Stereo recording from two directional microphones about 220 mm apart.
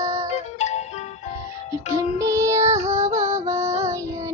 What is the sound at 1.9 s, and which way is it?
Music, 15° right (ahead or behind).